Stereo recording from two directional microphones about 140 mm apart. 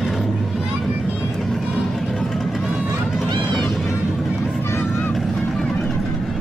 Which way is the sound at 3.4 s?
Centre (ahead or behind).